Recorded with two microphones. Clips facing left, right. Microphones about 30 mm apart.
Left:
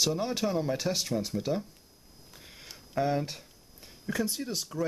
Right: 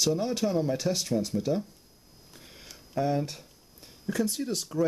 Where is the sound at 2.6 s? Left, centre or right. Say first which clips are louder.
Right 1 dB; centre.